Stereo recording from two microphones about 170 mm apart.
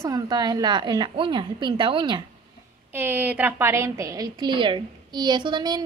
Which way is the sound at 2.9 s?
10° right (ahead or behind).